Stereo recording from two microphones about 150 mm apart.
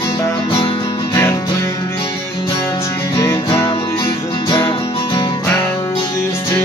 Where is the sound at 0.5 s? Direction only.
35° left (ahead or behind).